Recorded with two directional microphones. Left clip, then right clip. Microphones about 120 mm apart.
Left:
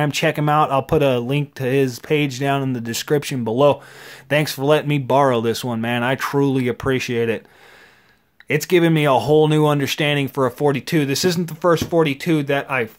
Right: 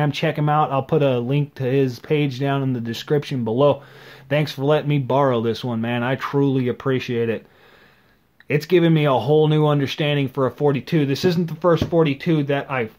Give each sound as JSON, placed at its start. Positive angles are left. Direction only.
{"t": 0.0, "sound": "speech", "side_deg": 25}
{"t": 8.5, "sound": "speech", "side_deg": 25}